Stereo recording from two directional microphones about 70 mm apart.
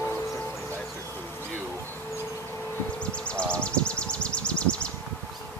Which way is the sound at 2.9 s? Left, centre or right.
Centre.